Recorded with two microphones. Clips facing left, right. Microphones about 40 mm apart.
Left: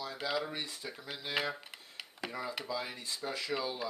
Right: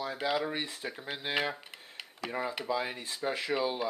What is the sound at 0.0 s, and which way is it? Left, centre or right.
Speech, right.